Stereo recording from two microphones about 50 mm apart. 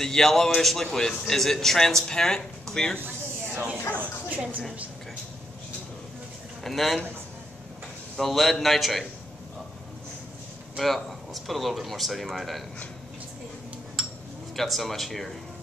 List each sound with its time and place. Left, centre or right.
0.0 s speech: centre
3.0 s a sound: right
4.0 s speech: right
6.6 s speech: centre
8.2 s speech: centre
10.8 s speech: centre
14.5 s speech: centre